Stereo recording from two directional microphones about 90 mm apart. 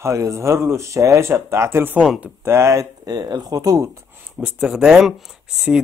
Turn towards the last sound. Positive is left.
turn(degrees=-5)  # may be behind; listen again after turning